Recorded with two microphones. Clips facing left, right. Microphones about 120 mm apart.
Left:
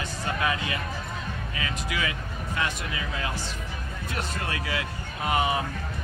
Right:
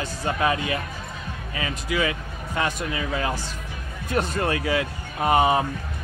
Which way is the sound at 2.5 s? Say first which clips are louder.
Right 5 dB; 40° right (ahead or behind).